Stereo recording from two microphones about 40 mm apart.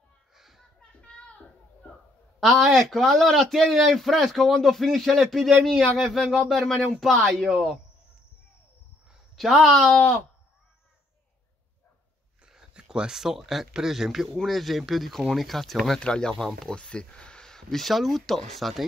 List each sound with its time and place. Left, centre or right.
0.3 s a sound: centre
0.7 s a sound: left
2.4 s a man's voice: centre
9.3 s a man's voice: centre
12.8 s speech: centre
14.3 s a man's voice: centre
16.0 s speech: left
17.5 s a man's voice: centre